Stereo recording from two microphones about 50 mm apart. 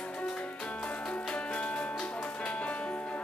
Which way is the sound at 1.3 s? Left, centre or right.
Left.